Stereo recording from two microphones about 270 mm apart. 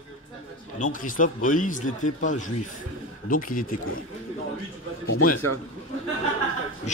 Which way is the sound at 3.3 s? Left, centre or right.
Left.